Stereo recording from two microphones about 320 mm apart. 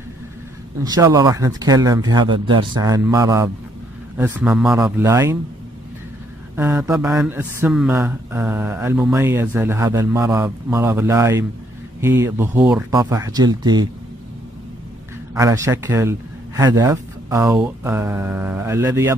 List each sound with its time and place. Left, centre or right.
0.7 s speech: centre
6.5 s speech: centre
15.3 s speech: centre